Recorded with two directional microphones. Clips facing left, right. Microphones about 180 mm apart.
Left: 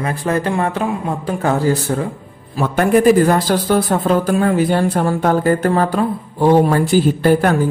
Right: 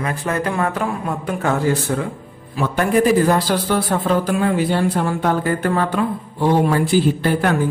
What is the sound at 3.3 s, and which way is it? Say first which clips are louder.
A man's voice: left 3 dB; 45° left (ahead or behind).